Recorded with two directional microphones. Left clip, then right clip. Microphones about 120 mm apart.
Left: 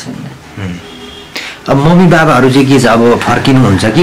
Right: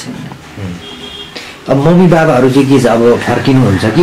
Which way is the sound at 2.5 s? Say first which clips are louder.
Left 1 dB; 45° left (ahead or behind).